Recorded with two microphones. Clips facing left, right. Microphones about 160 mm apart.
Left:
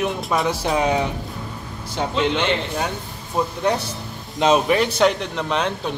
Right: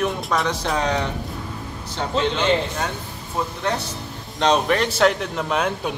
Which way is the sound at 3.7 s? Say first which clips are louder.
Left 3 dB; 15° left (ahead or behind).